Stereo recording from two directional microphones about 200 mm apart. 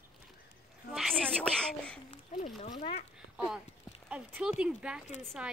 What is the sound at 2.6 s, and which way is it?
Speech, 30° left (ahead or behind).